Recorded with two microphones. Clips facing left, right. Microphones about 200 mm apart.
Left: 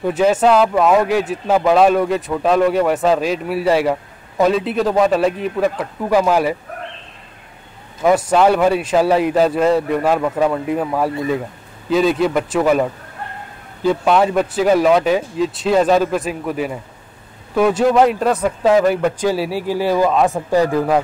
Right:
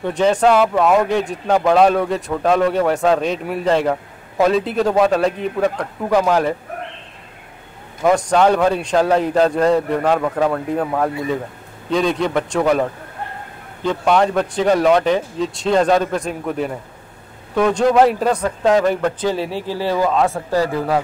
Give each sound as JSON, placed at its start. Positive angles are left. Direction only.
{"t": 0.0, "sound": "speech", "side_deg": 5}
{"t": 8.0, "sound": "speech", "side_deg": 5}
{"t": 13.8, "sound": "speech", "side_deg": 5}